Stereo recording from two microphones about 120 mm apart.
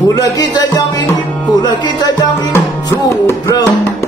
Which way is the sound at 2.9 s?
25° left (ahead or behind).